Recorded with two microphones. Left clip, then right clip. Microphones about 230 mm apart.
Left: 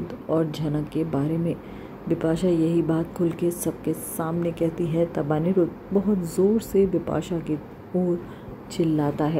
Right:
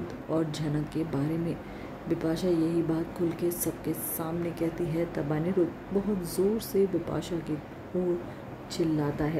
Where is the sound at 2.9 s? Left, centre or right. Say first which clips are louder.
Left 5 dB; centre.